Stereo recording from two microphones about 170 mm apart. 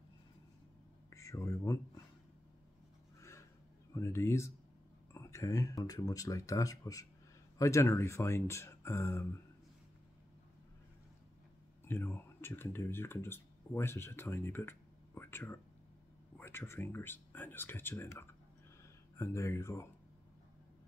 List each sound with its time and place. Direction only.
1.1 s speech: 15° left (ahead or behind)
3.2 s a sound: 15° left (ahead or behind)
3.9 s speech: 15° left (ahead or behind)
11.9 s speech: 15° left (ahead or behind)